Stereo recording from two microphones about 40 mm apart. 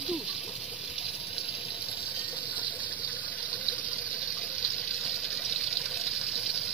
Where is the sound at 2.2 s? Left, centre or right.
Right; by 6.6 s centre.